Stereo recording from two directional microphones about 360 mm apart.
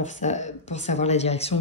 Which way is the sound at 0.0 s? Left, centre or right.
Centre.